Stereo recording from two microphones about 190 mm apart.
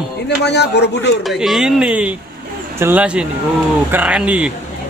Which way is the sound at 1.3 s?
Centre (ahead or behind).